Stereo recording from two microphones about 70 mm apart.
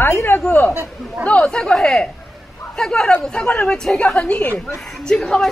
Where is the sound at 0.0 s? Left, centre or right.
Left.